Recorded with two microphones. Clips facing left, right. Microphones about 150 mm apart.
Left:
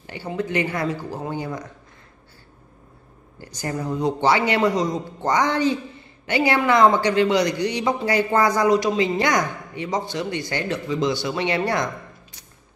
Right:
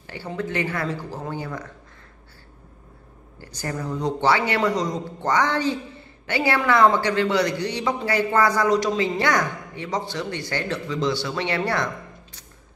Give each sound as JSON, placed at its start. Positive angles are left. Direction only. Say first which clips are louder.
{"t": 0.0, "sound": "a man's voice", "louder": "left 2 dB", "side_deg": 15}
{"t": 3.3, "sound": "a man's voice", "louder": "left 2 dB", "side_deg": 15}